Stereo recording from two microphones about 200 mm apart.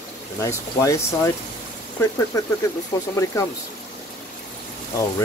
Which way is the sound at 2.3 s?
15° left (ahead or behind).